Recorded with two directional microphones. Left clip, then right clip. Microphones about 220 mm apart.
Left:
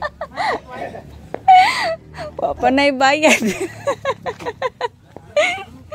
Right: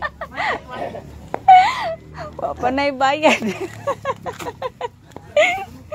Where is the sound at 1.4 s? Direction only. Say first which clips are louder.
Even; 50° left (ahead or behind).